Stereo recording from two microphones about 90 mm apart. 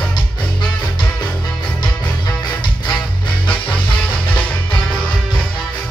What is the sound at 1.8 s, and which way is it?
Music, 55° left (ahead or behind).